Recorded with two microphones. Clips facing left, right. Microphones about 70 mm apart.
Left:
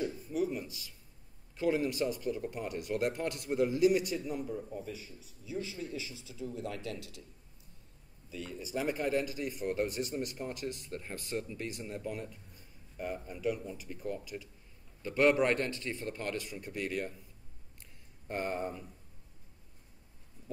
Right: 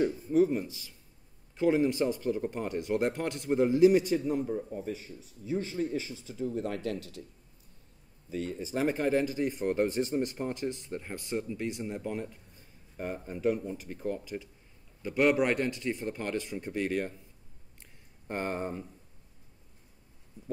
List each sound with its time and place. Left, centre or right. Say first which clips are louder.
0.0 s speech: right 8 dB; right
4.7 s speech: right 5 dB; right
8.3 s speech: right 6 dB; right
15.0 s speech: right 1 dB; centre
18.2 s speech: right 2 dB; right